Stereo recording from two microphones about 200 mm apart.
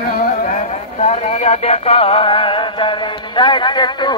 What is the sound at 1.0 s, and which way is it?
Music, 35° left (ahead or behind).